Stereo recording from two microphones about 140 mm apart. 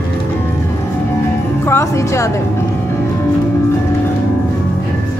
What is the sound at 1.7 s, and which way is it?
Music, 20° left (ahead or behind).